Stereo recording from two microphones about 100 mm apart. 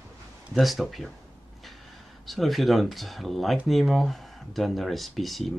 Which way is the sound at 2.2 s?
Centre (ahead or behind).